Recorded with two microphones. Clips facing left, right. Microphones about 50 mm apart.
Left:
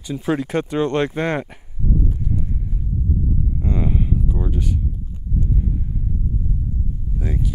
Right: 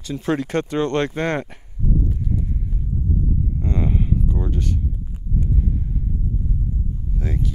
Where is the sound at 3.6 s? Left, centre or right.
Centre.